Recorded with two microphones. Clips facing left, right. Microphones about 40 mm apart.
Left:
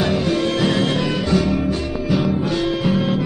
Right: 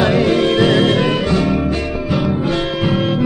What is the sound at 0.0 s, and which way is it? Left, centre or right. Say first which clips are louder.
Music: right 6 dB; right.